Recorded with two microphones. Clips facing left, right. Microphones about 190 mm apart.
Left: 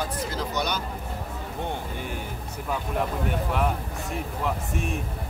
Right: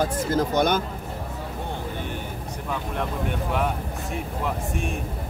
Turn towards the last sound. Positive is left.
turn(degrees=0)  # may be behind; listen again after turning